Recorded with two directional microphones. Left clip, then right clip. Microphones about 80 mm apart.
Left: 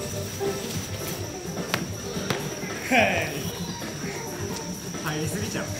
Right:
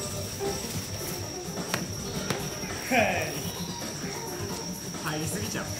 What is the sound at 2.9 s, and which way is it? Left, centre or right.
Speech, left.